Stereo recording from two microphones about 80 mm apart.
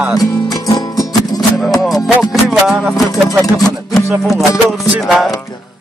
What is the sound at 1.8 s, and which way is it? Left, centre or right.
Music, centre.